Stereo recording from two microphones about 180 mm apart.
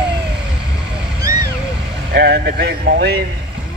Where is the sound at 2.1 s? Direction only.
65° right (ahead or behind).